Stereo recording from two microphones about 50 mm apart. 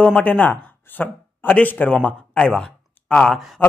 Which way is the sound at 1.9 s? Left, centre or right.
Centre.